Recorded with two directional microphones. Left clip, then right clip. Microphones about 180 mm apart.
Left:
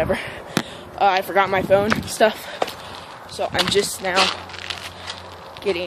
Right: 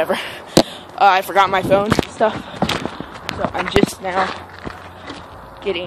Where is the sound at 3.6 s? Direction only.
Centre (ahead or behind).